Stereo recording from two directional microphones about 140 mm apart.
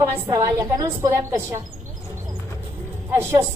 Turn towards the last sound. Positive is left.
turn(degrees=-20)  # may be behind; listen again after turning